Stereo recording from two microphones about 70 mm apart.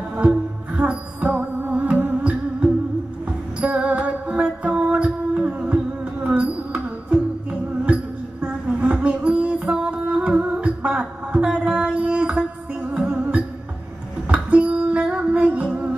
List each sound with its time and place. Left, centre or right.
0.2 s music: centre
3.6 s music: centre